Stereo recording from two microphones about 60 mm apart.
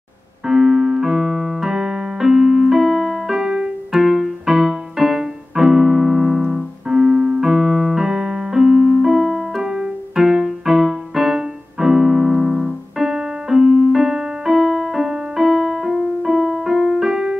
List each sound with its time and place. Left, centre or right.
0.5 s keyboard: centre